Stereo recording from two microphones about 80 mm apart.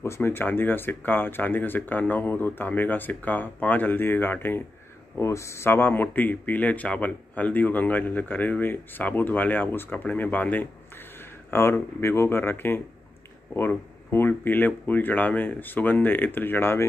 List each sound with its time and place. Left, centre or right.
0.0 s speech: left
5.2 s speech: left
11.5 s speech: left